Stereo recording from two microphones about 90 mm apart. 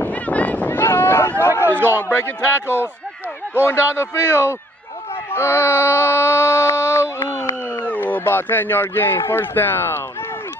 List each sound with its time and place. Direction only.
0.0 s a sound: 15° left (ahead or behind)
1.7 s a man's voice: 25° right (ahead or behind)
3.6 s a man's voice: 30° left (ahead or behind)
7.8 s speech: 20° left (ahead or behind)